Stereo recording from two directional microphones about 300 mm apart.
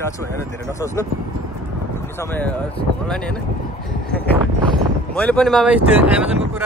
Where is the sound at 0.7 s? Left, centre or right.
Centre.